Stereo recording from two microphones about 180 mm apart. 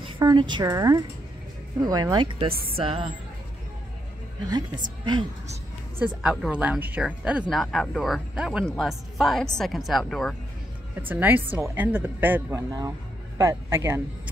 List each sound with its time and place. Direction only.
0.2 s speech: 25° right (ahead or behind)
4.5 s speech: 25° right (ahead or behind)
6.2 s speech: 5° right (ahead or behind)
11.0 s speech: 10° right (ahead or behind)